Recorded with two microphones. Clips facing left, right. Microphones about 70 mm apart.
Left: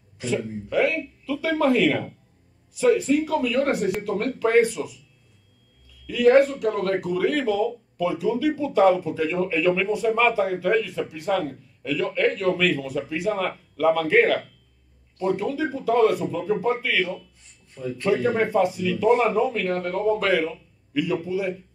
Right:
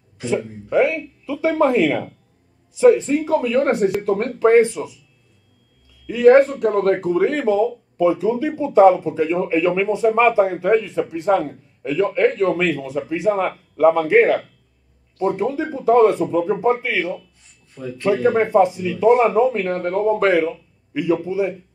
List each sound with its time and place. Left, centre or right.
0.2 s speech: right
6.0 s speech: right